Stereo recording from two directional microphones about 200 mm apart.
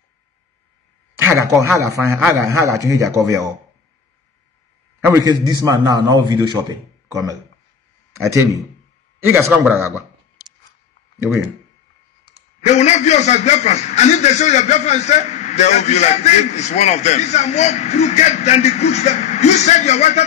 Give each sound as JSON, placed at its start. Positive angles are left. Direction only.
{"t": 1.1, "sound": "speech", "side_deg": -15}
{"t": 5.0, "sound": "a man's voice", "side_deg": -15}
{"t": 12.3, "sound": "a man's voice", "side_deg": 35}